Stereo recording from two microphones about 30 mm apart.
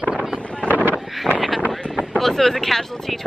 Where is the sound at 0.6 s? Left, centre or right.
Right.